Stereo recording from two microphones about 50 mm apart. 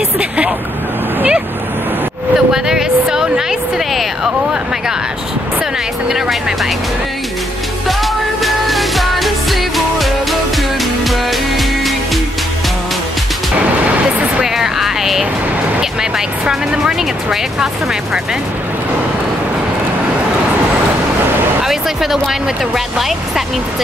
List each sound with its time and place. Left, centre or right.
0.2 s speech: right
2.3 s a sound: centre
6.0 s speech: centre
8.0 s music: centre
14.4 s music: centre
15.8 s speech: centre
21.6 s speech: centre